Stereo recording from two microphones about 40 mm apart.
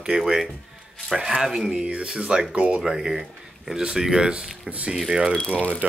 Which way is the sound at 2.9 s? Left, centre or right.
Centre.